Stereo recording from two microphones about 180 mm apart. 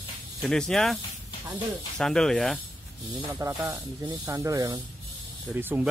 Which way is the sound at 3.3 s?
20° right (ahead or behind).